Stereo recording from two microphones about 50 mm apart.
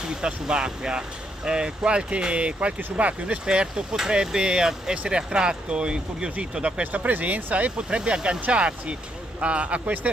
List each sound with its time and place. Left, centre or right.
0.0 s speech: centre